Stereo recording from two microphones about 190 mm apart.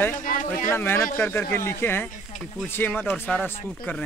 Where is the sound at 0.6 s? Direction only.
10° left (ahead or behind).